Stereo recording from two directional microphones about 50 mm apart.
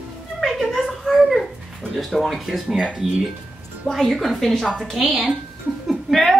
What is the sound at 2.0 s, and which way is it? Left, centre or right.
A woman's voice, centre.